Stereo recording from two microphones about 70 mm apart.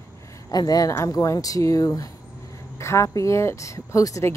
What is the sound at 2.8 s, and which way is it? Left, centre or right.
Speech, left.